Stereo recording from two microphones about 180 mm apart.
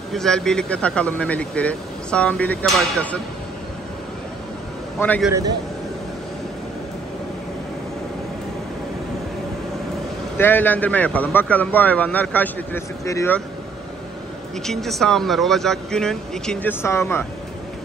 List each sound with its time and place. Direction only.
0.1 s a man's voice: centre (ahead or behind)
10.3 s a man's voice: 10° left (ahead or behind)
14.7 s speech: centre (ahead or behind)